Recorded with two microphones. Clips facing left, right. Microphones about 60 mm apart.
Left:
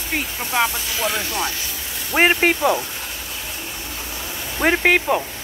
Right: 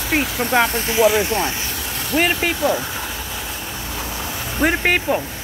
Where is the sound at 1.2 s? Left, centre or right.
Right.